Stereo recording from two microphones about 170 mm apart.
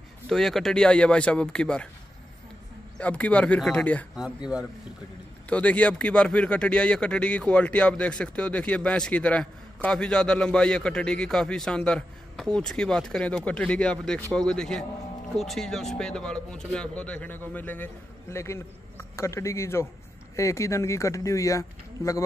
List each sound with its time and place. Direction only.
0.3 s speech: centre (ahead or behind)
3.0 s speech: 10° left (ahead or behind)
4.1 s speech: 5° right (ahead or behind)
5.5 s speech: 10° left (ahead or behind)